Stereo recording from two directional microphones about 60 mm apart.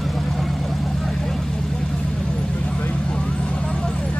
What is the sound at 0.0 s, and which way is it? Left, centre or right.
Vehicle, centre.